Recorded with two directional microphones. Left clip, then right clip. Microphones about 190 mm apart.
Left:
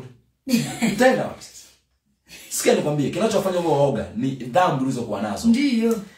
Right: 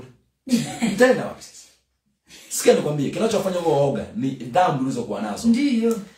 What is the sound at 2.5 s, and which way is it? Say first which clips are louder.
A man's voice: right 2 dB; 20° right (ahead or behind).